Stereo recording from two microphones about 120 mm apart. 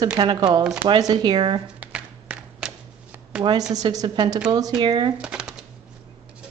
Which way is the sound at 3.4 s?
40° right (ahead or behind).